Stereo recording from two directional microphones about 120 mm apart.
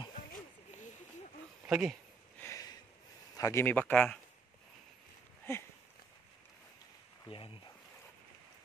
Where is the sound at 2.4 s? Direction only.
30° left (ahead or behind).